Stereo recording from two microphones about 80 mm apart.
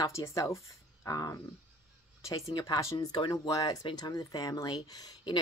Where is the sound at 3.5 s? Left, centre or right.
Left.